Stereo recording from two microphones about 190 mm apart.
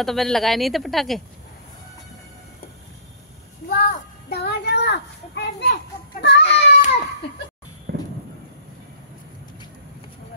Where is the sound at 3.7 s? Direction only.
45° left (ahead or behind); by 6.7 s 65° left (ahead or behind).